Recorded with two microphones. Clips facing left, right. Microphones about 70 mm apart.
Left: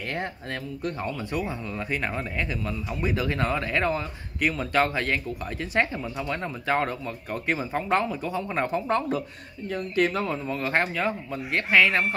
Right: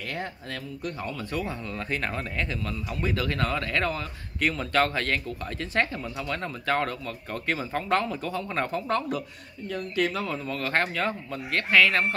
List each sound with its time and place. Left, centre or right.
0.1 s speech: left
1.3 s speech: centre
4.4 s speech: centre
9.7 s speech: left; by 12.1 s centre